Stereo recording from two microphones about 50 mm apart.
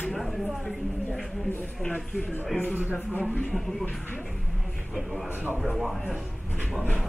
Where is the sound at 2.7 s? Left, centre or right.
Right.